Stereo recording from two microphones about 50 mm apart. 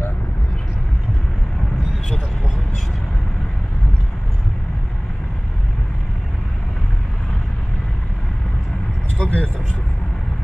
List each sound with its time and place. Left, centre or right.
9.2 s speech: left